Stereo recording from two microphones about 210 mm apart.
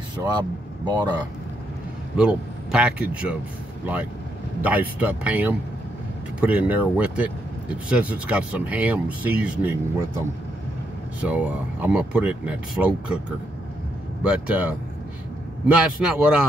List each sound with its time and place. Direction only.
0.2 s speech: 20° right (ahead or behind)
2.1 s a man's voice: 5° right (ahead or behind)
11.1 s speech: 5° right (ahead or behind)
14.2 s a man's voice: 5° right (ahead or behind)